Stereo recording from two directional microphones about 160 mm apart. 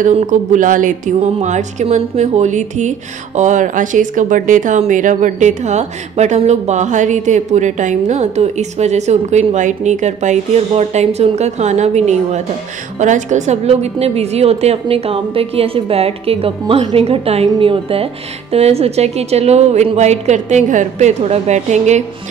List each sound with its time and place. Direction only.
0.3 s a woman's voice: 55° right (ahead or behind)